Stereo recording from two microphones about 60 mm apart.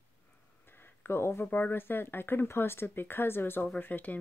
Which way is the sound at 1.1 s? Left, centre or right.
Left.